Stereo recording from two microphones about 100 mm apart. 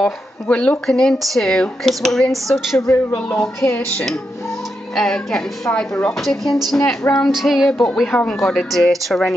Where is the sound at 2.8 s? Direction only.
25° left (ahead or behind).